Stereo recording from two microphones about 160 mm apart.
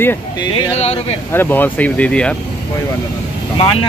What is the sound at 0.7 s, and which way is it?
Speech, 40° left (ahead or behind).